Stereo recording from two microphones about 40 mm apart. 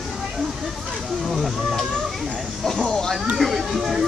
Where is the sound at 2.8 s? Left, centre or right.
Centre.